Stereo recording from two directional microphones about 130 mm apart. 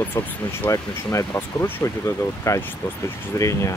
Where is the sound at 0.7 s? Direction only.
25° left (ahead or behind).